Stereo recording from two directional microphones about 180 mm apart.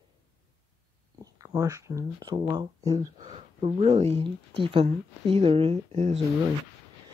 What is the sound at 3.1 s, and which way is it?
Speech, 35° right (ahead or behind).